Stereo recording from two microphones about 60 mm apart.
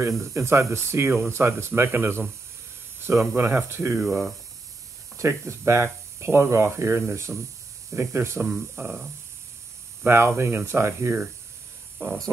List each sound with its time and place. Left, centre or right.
0.2 s speech: right
1.7 s speech: right
4.0 s speech: centre
5.1 s speech: right
8.4 s speech: right
10.0 s speech: right